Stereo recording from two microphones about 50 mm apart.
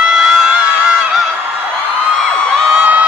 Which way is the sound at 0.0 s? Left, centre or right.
Centre.